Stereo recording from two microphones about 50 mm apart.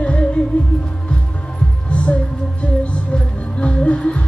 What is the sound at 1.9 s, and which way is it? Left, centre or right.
Music, left.